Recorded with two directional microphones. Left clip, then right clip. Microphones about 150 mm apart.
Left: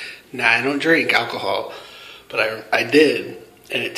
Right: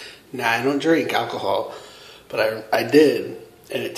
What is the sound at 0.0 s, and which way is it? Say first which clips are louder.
Speech: left 4 dB; 25° right (ahead or behind).